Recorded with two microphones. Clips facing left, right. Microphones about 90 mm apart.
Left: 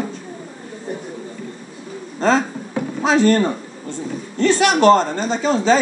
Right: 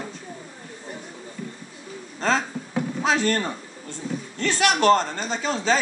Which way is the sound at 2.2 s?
5° left (ahead or behind).